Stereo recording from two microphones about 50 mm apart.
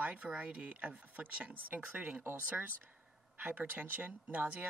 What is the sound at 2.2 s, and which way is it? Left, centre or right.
Speech, right.